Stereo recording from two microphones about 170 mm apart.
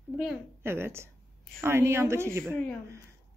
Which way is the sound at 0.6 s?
15° right (ahead or behind).